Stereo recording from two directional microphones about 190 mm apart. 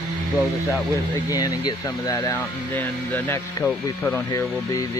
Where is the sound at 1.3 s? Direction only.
20° left (ahead or behind); by 4.2 s centre (ahead or behind).